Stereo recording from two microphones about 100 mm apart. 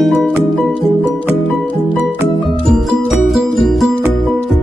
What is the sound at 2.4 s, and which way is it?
Music, centre (ahead or behind).